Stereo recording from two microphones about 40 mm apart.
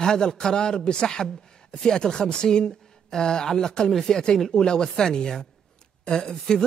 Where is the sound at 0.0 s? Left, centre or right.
Centre.